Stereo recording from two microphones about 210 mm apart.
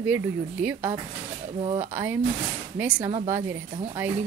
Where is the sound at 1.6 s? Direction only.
30° right (ahead or behind).